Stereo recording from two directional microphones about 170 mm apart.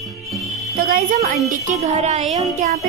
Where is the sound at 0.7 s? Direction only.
60° right (ahead or behind).